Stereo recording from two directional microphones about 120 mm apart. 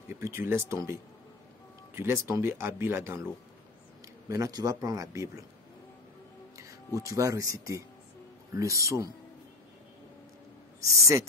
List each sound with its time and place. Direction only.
0.1 s speech: 20° right (ahead or behind)
2.0 s speech: 20° right (ahead or behind)
4.3 s speech: 30° right (ahead or behind)
6.5 s music: 25° right (ahead or behind)
7.0 s speech: 25° right (ahead or behind)
10.8 s speech: 25° right (ahead or behind)